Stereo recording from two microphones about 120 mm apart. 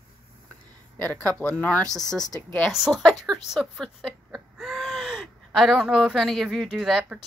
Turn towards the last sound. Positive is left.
turn(degrees=-5)  # may be behind; listen again after turning